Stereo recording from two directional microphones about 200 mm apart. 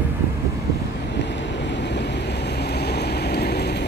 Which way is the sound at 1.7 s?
60° left (ahead or behind).